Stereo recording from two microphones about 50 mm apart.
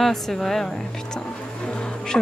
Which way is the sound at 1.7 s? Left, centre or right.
Centre.